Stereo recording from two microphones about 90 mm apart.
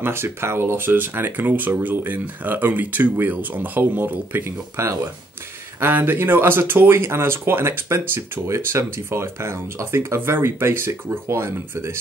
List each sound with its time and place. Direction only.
0.0 s speech: 30° right (ahead or behind)